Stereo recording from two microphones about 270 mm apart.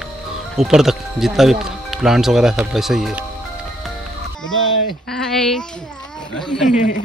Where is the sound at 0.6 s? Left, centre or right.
Centre.